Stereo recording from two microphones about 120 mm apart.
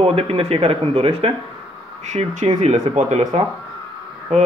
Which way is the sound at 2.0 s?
70° right (ahead or behind).